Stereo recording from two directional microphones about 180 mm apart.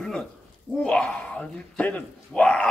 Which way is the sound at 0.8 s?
5° left (ahead or behind).